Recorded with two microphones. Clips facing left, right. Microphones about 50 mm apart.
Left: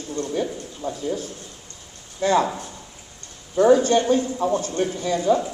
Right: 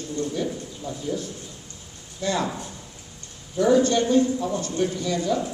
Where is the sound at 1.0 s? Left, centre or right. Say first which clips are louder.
Left 2 dB; left.